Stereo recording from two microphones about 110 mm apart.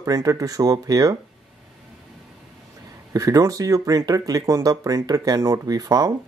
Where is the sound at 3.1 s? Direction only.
30° right (ahead or behind).